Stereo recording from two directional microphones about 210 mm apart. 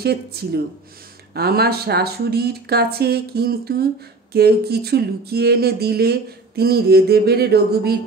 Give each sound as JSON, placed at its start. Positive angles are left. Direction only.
{"t": 0.0, "sound": "speech", "side_deg": -50}